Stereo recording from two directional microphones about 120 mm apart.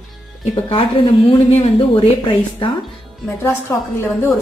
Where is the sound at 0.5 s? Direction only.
50° left (ahead or behind).